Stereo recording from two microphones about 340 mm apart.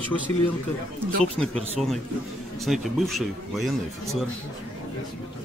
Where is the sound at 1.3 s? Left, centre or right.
Centre.